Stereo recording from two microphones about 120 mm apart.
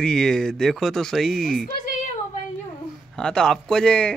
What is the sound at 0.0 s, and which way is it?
Speech, 5° left (ahead or behind).